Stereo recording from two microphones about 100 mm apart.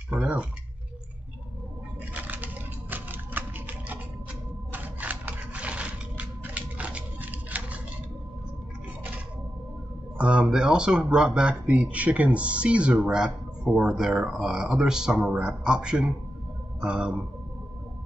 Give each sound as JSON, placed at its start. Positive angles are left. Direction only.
{"t": 0.1, "sound": "speech", "side_deg": -15}
{"t": 2.1, "sound": "music", "side_deg": -15}
{"t": 4.7, "sound": "a sound", "side_deg": -15}
{"t": 10.1, "sound": "speech", "side_deg": -10}